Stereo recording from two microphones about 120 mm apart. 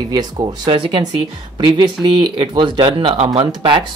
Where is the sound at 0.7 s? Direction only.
45° right (ahead or behind).